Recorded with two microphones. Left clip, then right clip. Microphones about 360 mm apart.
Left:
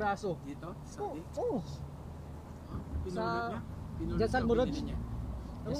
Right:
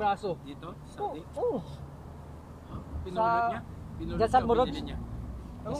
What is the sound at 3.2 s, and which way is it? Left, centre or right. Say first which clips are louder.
Speech: right 10 dB; centre.